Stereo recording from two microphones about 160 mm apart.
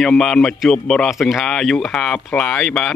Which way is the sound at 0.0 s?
5° left (ahead or behind).